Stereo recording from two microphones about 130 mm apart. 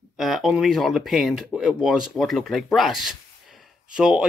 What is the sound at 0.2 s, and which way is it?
Speech, centre (ahead or behind).